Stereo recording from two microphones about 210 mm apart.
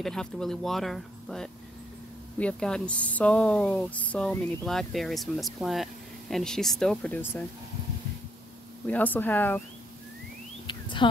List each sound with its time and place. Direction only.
0.0 s speech: 5° left (ahead or behind)
8.8 s speech: 10° left (ahead or behind)
10.7 s a sound: 20° left (ahead or behind)